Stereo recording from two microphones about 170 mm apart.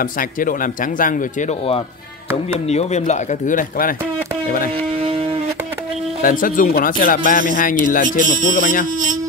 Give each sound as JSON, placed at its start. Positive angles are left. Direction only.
{"t": 0.4, "sound": "speech", "side_deg": 55}
{"t": 2.7, "sound": "speech", "side_deg": 40}
{"t": 6.2, "sound": "speech", "side_deg": 55}